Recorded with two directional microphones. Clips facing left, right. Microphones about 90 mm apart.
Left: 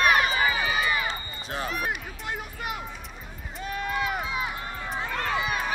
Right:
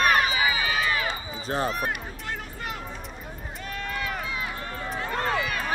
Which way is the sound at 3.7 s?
20° left (ahead or behind).